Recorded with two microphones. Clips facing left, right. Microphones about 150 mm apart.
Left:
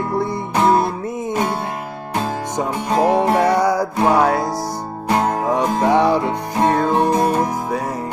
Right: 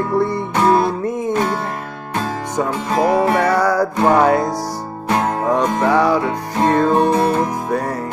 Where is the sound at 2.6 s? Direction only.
20° left (ahead or behind).